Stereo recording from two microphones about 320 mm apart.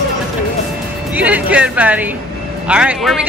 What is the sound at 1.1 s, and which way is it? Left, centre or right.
Music, centre.